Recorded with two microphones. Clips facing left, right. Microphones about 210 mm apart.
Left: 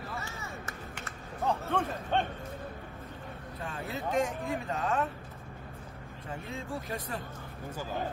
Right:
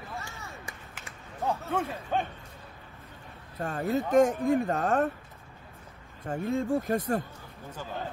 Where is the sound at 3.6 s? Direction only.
50° right (ahead or behind).